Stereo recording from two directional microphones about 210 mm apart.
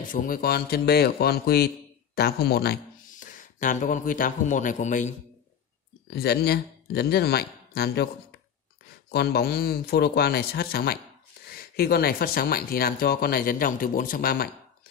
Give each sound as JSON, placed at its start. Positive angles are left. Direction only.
{"t": 0.1, "sound": "speech", "side_deg": 40}
{"t": 6.0, "sound": "speech", "side_deg": 50}